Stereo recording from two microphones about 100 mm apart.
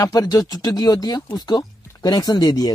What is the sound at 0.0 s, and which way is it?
Speech, 35° left (ahead or behind).